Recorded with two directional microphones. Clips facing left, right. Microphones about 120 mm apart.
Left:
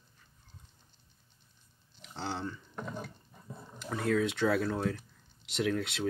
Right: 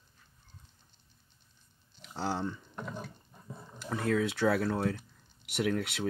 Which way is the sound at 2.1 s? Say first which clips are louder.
Right 3 dB; 10° right (ahead or behind).